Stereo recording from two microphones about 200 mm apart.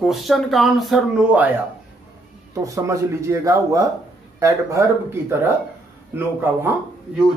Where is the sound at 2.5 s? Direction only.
15° right (ahead or behind).